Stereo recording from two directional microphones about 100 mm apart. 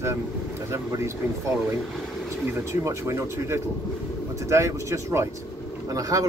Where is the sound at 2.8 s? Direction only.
30° right (ahead or behind).